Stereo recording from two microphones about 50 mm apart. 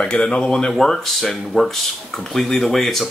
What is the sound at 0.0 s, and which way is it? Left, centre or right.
Speech, left.